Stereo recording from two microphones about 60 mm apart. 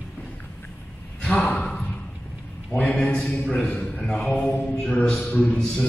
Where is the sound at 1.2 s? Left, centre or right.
Centre.